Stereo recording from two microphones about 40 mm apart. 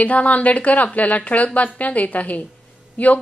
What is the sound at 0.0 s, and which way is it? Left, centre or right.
Speech, left.